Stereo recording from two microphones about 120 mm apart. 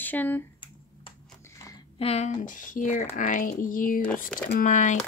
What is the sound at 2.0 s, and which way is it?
Speech, 60° left (ahead or behind).